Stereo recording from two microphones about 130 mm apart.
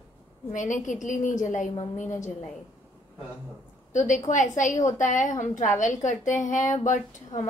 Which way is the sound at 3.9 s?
75° left (ahead or behind).